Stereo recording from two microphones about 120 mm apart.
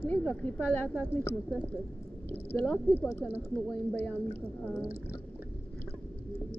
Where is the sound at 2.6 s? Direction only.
10° left (ahead or behind).